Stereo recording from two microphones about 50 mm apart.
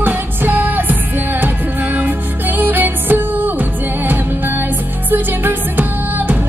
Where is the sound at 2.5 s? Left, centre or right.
Right.